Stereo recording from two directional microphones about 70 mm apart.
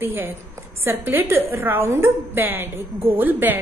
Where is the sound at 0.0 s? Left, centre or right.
Right.